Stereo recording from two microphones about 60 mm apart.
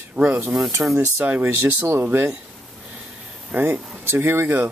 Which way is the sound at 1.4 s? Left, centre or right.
Right.